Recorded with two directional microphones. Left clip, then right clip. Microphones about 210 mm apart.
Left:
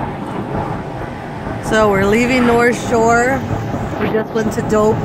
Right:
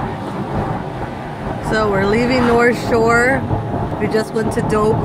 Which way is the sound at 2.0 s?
15° left (ahead or behind).